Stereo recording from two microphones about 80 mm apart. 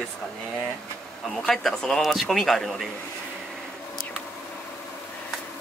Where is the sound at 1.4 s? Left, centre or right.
Centre.